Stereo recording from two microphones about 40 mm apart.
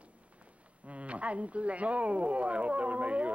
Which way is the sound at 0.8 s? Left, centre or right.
Right.